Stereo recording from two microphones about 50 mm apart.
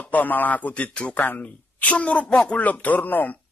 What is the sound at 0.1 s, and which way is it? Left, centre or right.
Speech, left.